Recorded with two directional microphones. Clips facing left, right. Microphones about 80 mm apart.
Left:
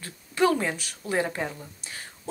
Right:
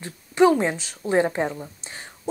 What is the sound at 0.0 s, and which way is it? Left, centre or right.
Speech, right.